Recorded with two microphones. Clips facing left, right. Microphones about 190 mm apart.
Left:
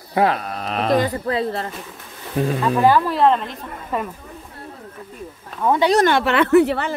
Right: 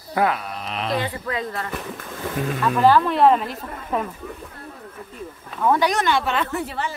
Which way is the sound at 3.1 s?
5° right (ahead or behind).